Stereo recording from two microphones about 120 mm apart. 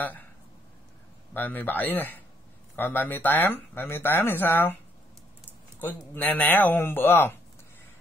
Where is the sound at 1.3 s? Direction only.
15° left (ahead or behind).